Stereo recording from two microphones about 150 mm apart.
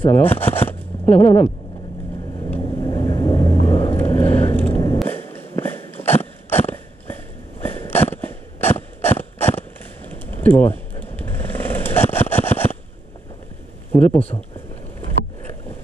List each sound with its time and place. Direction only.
0.0 s shuffling cards: 15° left (ahead or behind)
2.8 s vehicle: 25° left (ahead or behind)
5.0 s a sound: 15° left (ahead or behind)
6.0 s dog: 15° left (ahead or behind)
7.6 s a sound: 15° left (ahead or behind)
8.0 s mechanisms: 15° left (ahead or behind)
12.1 s vehicle: 15° left (ahead or behind)
13.9 s speech: 10° left (ahead or behind)